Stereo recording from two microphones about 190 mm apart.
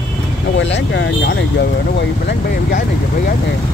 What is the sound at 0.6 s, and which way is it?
Speech, 70° left (ahead or behind).